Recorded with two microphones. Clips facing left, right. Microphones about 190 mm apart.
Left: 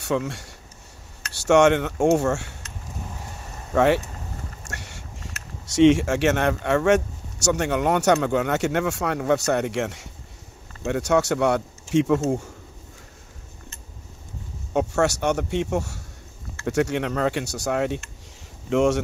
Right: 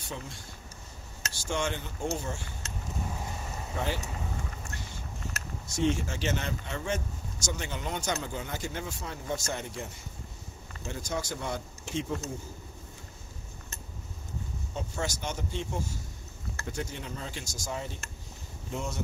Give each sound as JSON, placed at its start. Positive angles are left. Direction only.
{"t": 0.0, "sound": "speech", "side_deg": 75}
{"t": 3.7, "sound": "speech", "side_deg": 75}
{"t": 4.6, "sound": "a sound", "side_deg": 75}
{"t": 5.7, "sound": "speech", "side_deg": 85}
{"t": 14.7, "sound": "speech", "side_deg": 70}
{"t": 18.7, "sound": "speech", "side_deg": 80}